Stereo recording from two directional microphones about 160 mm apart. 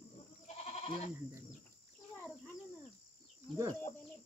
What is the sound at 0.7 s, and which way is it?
Goat, 40° left (ahead or behind).